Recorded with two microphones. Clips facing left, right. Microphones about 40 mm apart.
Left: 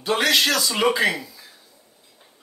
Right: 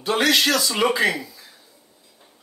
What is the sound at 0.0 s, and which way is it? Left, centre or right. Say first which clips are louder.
A man's voice: right 1 dB; centre.